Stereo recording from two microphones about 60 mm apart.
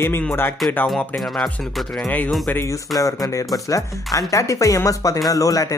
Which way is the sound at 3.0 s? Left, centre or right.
Left.